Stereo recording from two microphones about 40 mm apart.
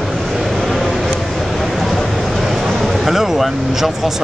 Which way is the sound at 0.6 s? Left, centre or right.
Centre.